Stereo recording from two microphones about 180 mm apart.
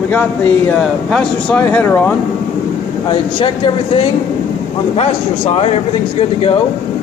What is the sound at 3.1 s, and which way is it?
A man's voice, 30° left (ahead or behind).